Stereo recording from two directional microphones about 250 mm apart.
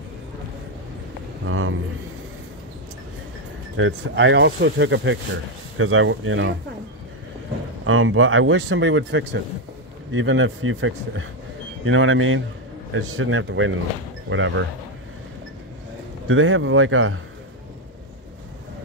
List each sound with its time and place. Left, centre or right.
1.5 s a man's voice: right
3.7 s speech: right
7.8 s speech: right
16.3 s speech: right